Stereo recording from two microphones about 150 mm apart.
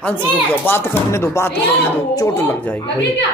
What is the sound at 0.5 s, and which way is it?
Speech, 15° left (ahead or behind).